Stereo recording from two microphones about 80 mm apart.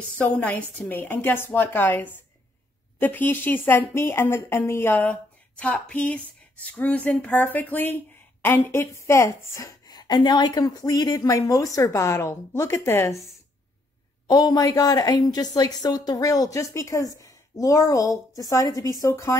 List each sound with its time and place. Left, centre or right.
0.2 s speech: centre; by 9.8 s left
9.8 s a woman's voice: left
14.2 s a woman's voice: left